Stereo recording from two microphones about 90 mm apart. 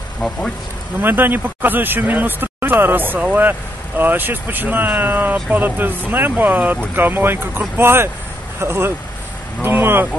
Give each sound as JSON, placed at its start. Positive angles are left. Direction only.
{"t": 0.2, "sound": "speech", "side_deg": 10}
{"t": 1.0, "sound": "speech", "side_deg": -25}